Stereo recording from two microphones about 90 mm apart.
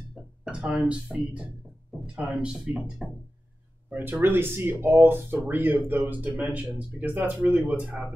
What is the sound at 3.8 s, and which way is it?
Speech, 20° right (ahead or behind).